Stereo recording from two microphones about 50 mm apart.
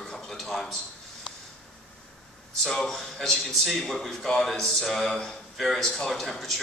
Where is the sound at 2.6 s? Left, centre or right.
Centre.